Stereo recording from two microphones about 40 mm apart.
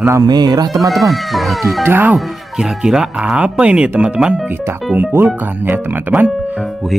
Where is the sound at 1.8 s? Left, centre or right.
Right.